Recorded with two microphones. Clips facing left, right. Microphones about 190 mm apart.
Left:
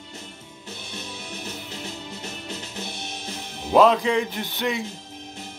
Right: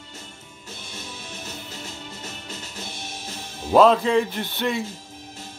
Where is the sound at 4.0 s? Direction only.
15° left (ahead or behind).